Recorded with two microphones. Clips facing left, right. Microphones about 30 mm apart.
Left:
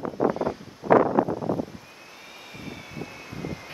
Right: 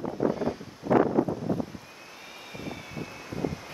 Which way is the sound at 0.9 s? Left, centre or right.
Left.